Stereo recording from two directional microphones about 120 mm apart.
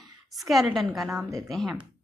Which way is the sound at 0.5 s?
Centre (ahead or behind).